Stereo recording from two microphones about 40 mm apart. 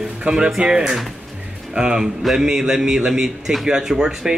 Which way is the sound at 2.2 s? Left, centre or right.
Centre.